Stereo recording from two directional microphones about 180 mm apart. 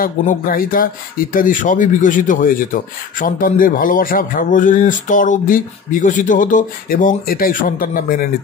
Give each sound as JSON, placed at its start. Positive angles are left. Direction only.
{"t": 0.0, "sound": "speech", "side_deg": 50}